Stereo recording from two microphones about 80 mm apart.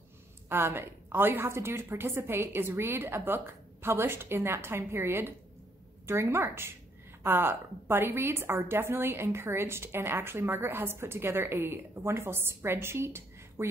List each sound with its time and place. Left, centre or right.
0.5 s a woman's voice: right